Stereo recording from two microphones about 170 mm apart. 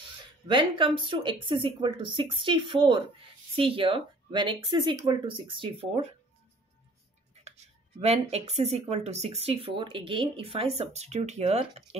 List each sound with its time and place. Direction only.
0.5 s speech: 30° right (ahead or behind)
7.4 s speech: 40° right (ahead or behind)